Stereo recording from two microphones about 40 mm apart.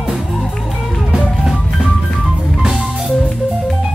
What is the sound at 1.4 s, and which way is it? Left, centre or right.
Music, centre.